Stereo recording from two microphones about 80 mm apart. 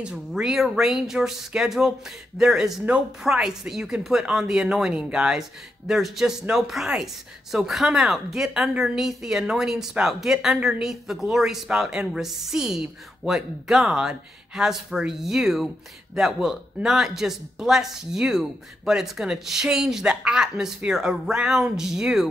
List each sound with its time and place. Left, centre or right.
0.0 s a woman's voice: centre